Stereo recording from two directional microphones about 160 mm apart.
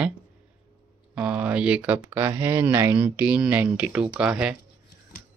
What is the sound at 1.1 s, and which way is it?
Speech, 5° right (ahead or behind).